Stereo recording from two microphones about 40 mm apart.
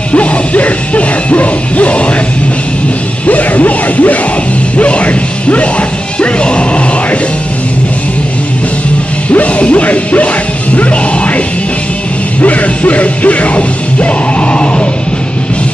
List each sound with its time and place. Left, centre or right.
0.1 s music: left
3.3 s music: left
9.3 s music: left